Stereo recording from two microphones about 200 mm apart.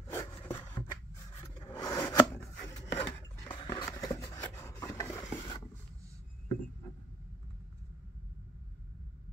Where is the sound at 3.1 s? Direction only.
15° left (ahead or behind).